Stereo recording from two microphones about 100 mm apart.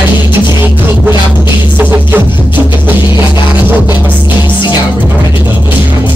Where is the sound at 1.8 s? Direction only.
20° right (ahead or behind).